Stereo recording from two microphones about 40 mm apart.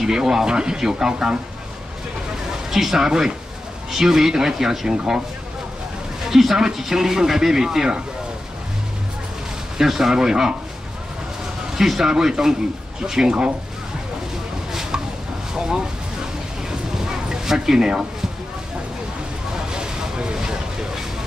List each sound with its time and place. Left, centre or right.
0.0 s speech: centre
2.7 s speech: centre
6.3 s speech: centre
9.8 s speech: centre
11.7 s speech: centre
14.7 s chopping: centre
15.5 s a sound: centre
16.9 s a sound: centre
19.7 s vehicle: centre